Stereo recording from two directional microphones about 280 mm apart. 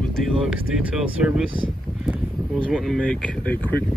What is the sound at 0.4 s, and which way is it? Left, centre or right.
A man's voice, centre.